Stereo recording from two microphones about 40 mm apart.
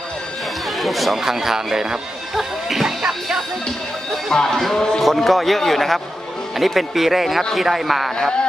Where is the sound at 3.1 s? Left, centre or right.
Centre.